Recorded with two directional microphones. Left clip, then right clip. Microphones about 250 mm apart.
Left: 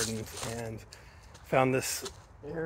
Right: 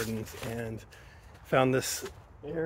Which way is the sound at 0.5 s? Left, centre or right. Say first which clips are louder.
Right 1 dB; centre.